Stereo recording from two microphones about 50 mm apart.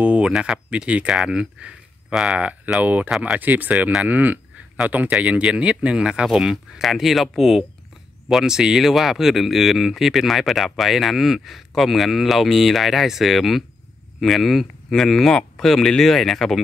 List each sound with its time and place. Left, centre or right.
0.0 s speech: right
1.1 s speech: centre; by 5.1 s right
5.2 s speech: right
6.2 s speech: centre